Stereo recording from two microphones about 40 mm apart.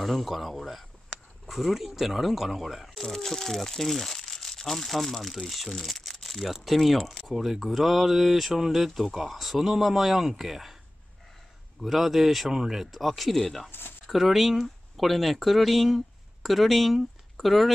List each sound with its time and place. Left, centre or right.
0.0 s speech: centre
2.9 s speech: centre
5.8 s crumpling: centre
6.5 s speech: centre
11.8 s speech: centre
13.7 s a sound: left
14.0 s speech: centre